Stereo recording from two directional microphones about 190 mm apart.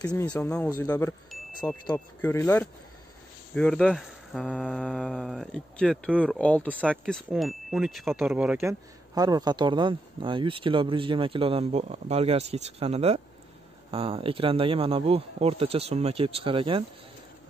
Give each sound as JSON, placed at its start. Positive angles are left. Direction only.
{"t": 0.1, "sound": "speech", "side_deg": 10}
{"t": 0.7, "sound": "speech", "side_deg": 15}
{"t": 2.2, "sound": "speech", "side_deg": 10}